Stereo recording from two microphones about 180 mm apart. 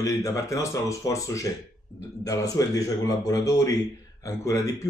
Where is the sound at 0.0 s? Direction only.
15° left (ahead or behind).